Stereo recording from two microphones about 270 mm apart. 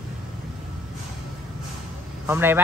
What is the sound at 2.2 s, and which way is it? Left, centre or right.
Speech, centre.